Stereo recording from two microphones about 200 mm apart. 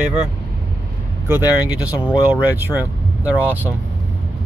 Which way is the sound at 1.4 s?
15° left (ahead or behind).